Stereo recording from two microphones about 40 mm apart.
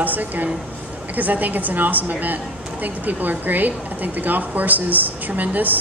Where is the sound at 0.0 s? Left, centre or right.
Right.